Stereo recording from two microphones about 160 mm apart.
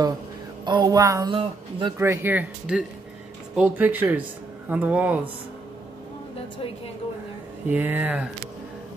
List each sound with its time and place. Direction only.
0.7 s music: 25° right (ahead or behind)
1.3 s speech: 30° right (ahead or behind)
2.0 s speech: 15° right (ahead or behind)
7.6 s speech: 10° right (ahead or behind)